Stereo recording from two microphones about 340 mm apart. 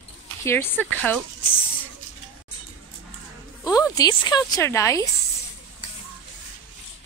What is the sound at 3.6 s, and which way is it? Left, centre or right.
Speech, centre.